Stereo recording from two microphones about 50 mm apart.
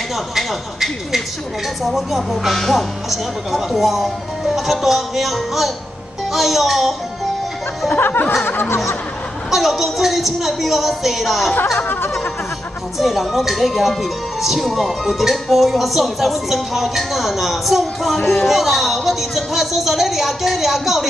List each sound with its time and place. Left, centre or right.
0.4 s speech: centre
7.9 s music: left
9.5 s speech: centre
11.6 s music: left
13.0 s speech: centre